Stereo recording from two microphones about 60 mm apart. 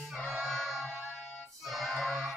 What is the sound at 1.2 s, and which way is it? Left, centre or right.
Music, left.